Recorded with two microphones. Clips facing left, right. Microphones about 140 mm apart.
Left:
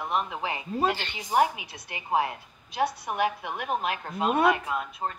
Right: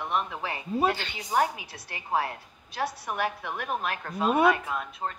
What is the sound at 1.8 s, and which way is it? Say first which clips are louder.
A woman's voice: left 2 dB; 15° left (ahead or behind).